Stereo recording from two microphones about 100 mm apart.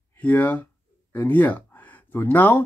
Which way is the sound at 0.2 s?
15° left (ahead or behind).